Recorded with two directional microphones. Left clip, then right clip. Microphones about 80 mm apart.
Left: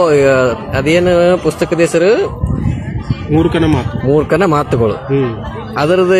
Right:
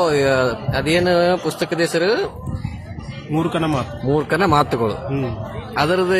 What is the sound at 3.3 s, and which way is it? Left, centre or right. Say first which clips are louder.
Speech: left 8 dB; right.